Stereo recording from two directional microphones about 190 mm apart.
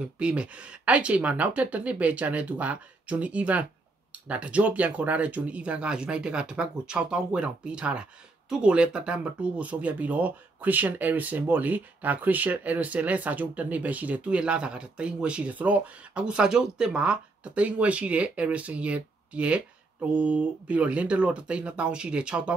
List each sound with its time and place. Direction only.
0.0 s speech: 5° right (ahead or behind)